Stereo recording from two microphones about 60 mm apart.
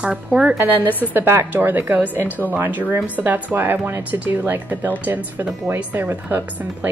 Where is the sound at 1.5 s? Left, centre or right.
Right.